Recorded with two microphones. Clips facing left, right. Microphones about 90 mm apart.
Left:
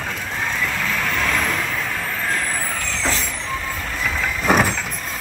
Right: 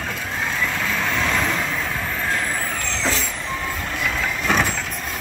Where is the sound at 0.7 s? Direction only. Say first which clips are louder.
Even; centre (ahead or behind).